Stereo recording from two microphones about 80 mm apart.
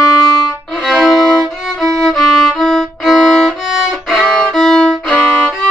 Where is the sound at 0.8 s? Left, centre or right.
Centre.